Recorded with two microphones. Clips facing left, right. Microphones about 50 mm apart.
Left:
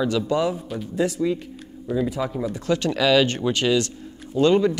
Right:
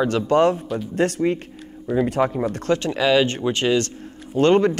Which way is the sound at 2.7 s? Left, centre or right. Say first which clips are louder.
Even; right.